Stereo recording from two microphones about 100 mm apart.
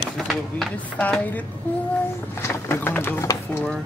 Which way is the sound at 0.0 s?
Centre (ahead or behind).